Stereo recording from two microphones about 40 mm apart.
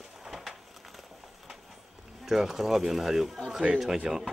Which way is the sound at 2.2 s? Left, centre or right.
Centre.